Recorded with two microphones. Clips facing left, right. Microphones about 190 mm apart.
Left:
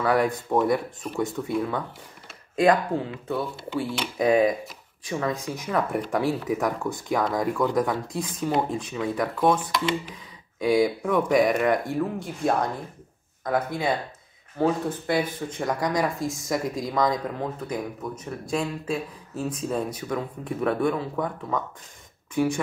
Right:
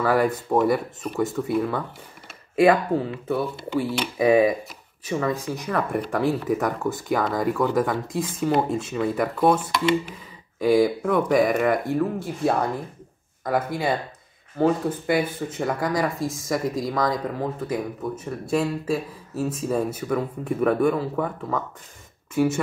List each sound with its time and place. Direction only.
0.0 s speech: centre (ahead or behind)
10.6 s speech: 5° right (ahead or behind)